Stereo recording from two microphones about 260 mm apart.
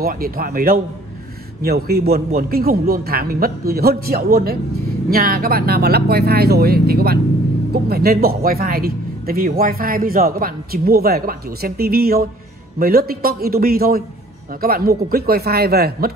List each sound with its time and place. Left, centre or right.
0.0 s speech: right